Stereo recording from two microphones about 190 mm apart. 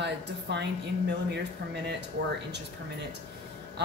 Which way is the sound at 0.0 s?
65° right (ahead or behind).